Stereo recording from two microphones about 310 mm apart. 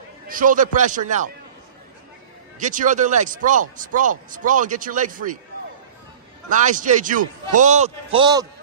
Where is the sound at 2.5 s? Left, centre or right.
Right.